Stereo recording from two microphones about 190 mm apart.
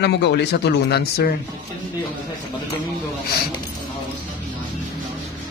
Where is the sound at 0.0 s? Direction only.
60° left (ahead or behind).